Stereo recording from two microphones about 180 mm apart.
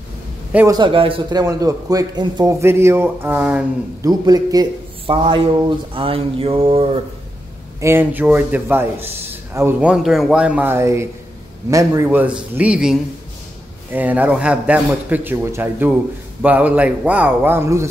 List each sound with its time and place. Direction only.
0.7 s a man's voice: 25° right (ahead or behind); by 4.1 s 10° right (ahead or behind)
4.1 s a man's voice: 20° right (ahead or behind)
7.8 s a man's voice: 10° right (ahead or behind)
13.9 s a man's voice: 10° right (ahead or behind)